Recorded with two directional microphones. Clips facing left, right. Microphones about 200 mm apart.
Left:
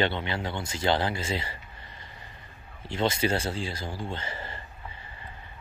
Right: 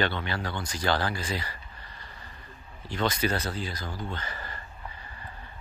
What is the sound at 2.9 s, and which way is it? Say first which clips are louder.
Speech: left 2 dB; 25° left (ahead or behind).